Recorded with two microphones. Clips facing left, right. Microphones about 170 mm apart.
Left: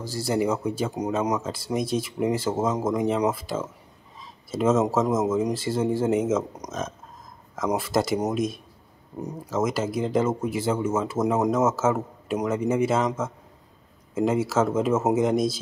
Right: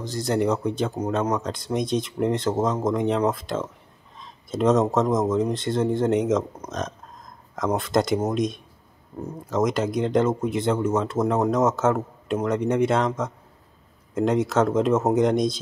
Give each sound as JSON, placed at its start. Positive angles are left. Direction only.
{"t": 0.0, "sound": "speech", "side_deg": 5}
{"t": 7.5, "sound": "speech", "side_deg": 5}
{"t": 9.1, "sound": "speech", "side_deg": 15}
{"t": 9.5, "sound": "speech", "side_deg": 5}